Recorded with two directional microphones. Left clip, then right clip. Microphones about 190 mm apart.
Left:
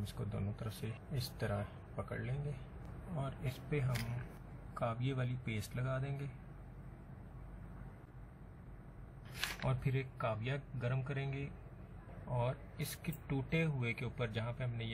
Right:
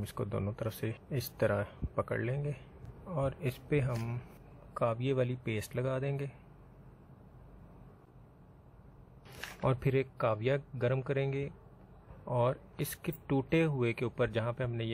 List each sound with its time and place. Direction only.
0.0 s speech: 55° right (ahead or behind)
9.6 s speech: 55° right (ahead or behind)